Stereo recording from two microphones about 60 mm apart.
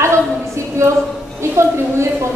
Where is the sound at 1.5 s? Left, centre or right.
Right.